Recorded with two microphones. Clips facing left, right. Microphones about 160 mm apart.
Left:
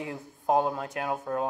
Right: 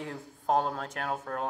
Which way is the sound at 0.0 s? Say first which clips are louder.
Left 3 dB; 15° left (ahead or behind).